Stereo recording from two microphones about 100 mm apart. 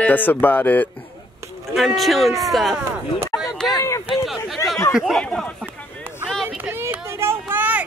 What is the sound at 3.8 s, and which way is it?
Speech, 35° left (ahead or behind).